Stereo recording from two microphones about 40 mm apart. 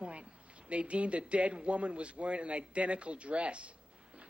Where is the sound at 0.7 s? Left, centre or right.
Right.